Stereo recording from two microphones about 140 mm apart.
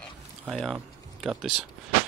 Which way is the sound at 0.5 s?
Centre (ahead or behind).